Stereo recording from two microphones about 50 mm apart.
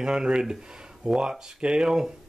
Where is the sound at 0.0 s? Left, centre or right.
Centre.